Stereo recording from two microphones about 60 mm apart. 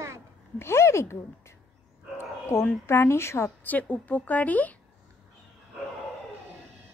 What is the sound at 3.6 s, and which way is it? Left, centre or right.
A woman's voice, left.